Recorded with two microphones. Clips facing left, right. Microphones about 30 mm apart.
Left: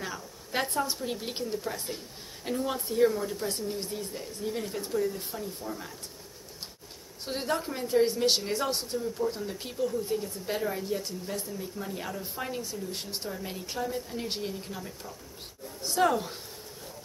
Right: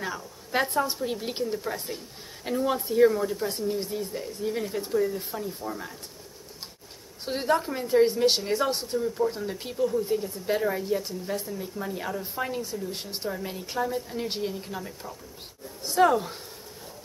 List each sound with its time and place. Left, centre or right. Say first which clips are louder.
0.0 s a sound: right 4 dB; centre
1.1 s a woman's voice: right 4 dB; centre
7.2 s a woman's voice: right 5 dB; centre
9.0 s speech: right 5 dB; right
9.3 s a woman's voice: right 3 dB; centre
14.8 s a woman's voice: right 3 dB; centre
15.8 s speech: right 4 dB; centre